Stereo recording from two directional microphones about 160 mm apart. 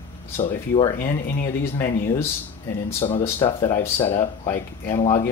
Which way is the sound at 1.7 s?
20° left (ahead or behind).